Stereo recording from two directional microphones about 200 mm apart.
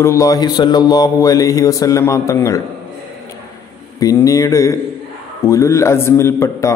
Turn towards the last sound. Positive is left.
turn(degrees=15)  # may be behind; listen again after turning